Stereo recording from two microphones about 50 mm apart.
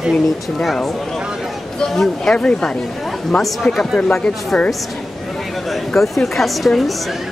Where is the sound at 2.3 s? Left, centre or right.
Centre.